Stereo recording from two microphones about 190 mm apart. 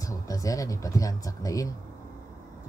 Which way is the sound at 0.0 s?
20° left (ahead or behind).